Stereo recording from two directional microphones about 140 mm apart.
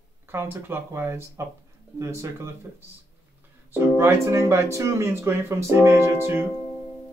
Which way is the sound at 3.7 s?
15° right (ahead or behind).